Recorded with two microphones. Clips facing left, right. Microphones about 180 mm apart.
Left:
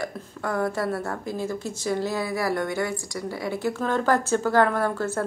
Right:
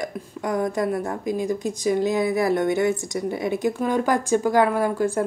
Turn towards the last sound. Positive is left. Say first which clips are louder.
# right 4 dB
turn(degrees=-15)  # may be behind; listen again after turning